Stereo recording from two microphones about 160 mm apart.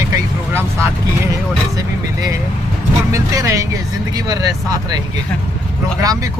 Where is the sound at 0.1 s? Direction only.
15° right (ahead or behind).